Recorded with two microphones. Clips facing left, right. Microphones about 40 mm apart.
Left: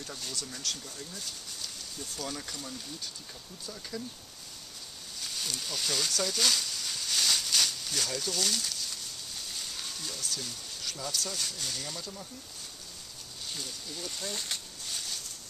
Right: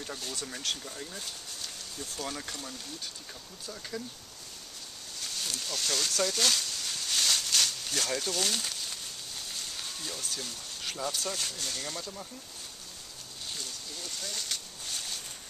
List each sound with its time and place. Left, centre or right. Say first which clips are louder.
0.4 s speech: right 3 dB; centre
5.2 s a sound: even; centre
10.8 s speech: right 2 dB; centre
13.5 s speech: left 1 dB; centre
14.3 s speech: right 2 dB; centre
14.9 s a sound: even; centre